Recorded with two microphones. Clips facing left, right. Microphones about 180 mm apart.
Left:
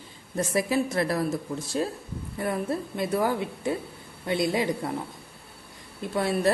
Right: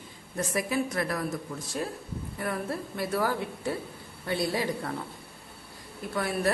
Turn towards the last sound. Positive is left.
turn(degrees=25)  # may be behind; listen again after turning